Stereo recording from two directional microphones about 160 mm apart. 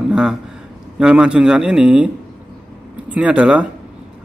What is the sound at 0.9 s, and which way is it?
A man's voice, 5° right (ahead or behind).